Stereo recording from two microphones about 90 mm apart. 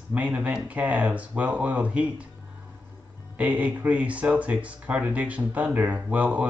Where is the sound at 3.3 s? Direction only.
15° right (ahead or behind).